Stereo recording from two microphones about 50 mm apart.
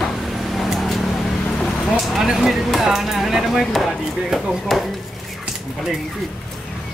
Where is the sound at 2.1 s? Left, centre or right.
Centre.